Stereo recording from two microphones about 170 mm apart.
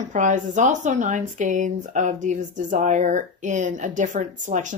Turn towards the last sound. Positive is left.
turn(degrees=-50)  # may be behind; listen again after turning